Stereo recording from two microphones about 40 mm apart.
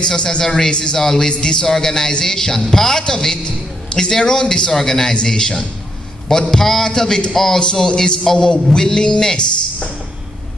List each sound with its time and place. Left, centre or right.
0.0 s speech: left
0.9 s a man's voice: centre